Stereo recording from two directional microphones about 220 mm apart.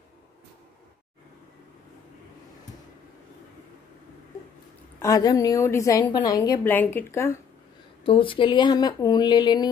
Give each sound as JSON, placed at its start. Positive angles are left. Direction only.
{"t": 5.0, "sound": "a woman's voice", "side_deg": 15}
{"t": 8.0, "sound": "speech", "side_deg": 25}